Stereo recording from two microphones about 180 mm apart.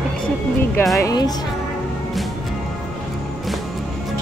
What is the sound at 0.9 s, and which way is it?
Speech, 20° left (ahead or behind).